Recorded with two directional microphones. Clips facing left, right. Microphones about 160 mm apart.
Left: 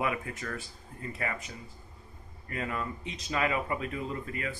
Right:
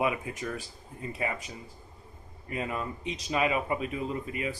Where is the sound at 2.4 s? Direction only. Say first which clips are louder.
Right 1 dB; 20° right (ahead or behind).